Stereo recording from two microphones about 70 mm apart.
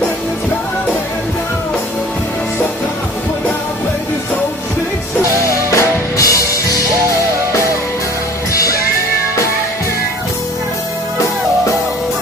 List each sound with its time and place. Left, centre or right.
5.7 s music: left